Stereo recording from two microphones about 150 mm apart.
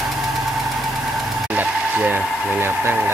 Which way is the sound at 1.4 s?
10° right (ahead or behind).